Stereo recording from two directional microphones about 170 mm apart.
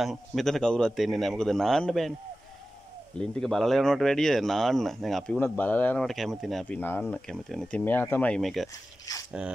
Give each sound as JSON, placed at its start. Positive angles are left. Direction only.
{"t": 0.0, "sound": "speech", "side_deg": 0}
{"t": 3.2, "sound": "speech", "side_deg": 5}
{"t": 9.1, "sound": "speech", "side_deg": 20}